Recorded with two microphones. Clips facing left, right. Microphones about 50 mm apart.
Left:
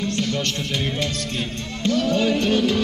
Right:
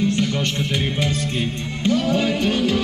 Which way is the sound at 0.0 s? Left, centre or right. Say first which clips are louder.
Right 3 dB; centre.